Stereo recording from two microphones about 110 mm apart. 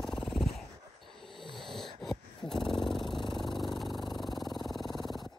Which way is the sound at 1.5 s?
5° left (ahead or behind).